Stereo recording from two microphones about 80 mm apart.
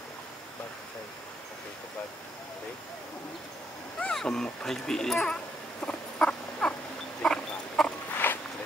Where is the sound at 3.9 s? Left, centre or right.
Centre.